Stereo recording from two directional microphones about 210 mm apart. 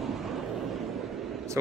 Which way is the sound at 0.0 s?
Centre (ahead or behind).